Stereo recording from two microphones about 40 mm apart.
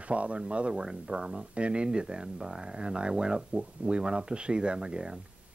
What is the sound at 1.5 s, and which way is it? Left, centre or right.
Speech, right.